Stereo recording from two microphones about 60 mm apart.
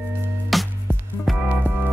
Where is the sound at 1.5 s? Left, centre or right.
Right.